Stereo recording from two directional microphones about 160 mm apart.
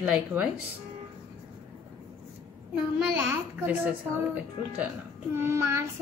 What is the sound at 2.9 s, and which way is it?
Speech, 10° right (ahead or behind).